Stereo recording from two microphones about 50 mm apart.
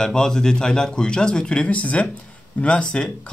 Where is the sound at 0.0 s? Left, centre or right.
Centre.